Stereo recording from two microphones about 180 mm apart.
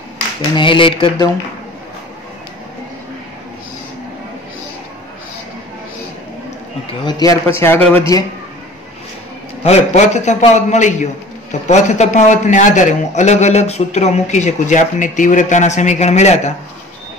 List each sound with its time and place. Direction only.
0.6 s speech: 30° left (ahead or behind)
6.9 s speech: 25° left (ahead or behind)
7.4 s a man's voice: 15° left (ahead or behind)
9.6 s a man's voice: 35° left (ahead or behind)